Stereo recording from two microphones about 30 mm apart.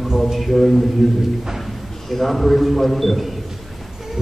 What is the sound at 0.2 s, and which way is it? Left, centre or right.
Speech, centre.